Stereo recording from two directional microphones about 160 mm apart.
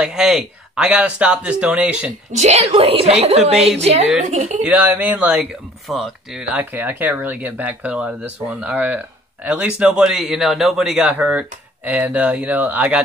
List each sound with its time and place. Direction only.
0.0 s speech: 5° right (ahead or behind)
2.3 s speech: 45° right (ahead or behind)
4.6 s speech: 10° right (ahead or behind)